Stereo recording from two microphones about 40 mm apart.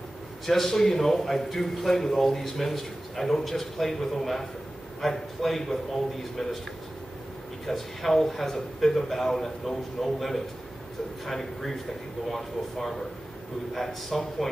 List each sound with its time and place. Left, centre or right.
0.5 s a man's voice: centre
7.6 s a man's voice: centre